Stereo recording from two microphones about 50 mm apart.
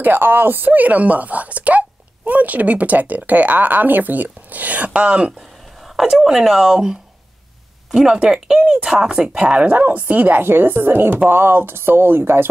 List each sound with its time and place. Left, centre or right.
0.0 s speech: right
5.8 s speech: centre
9.8 s speech: right